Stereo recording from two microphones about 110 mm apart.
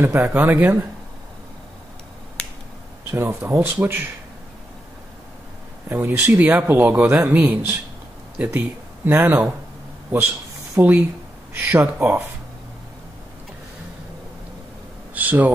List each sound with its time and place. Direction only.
0.0 s speech: 15° right (ahead or behind)
3.1 s speech: 25° right (ahead or behind)
5.9 s speech: 15° right (ahead or behind)
15.1 s speech: 15° right (ahead or behind)